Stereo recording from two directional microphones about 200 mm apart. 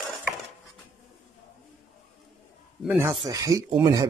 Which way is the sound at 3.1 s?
15° right (ahead or behind).